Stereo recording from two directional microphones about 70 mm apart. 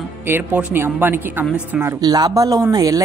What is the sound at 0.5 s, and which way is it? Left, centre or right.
Speech, right.